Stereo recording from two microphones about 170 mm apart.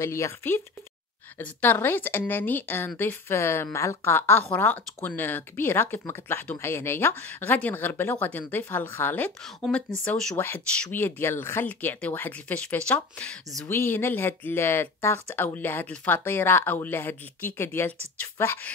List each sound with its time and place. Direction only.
0.0 s a woman's voice: 15° left (ahead or behind)